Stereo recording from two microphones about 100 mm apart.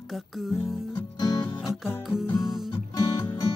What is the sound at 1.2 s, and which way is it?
Music, 45° left (ahead or behind).